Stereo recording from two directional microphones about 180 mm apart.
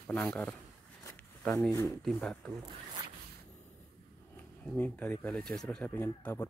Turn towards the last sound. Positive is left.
turn(degrees=10)  # may be behind; listen again after turning